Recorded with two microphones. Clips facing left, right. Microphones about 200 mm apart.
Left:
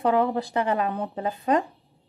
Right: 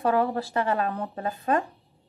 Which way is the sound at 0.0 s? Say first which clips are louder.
Left 2 dB; 15° left (ahead or behind).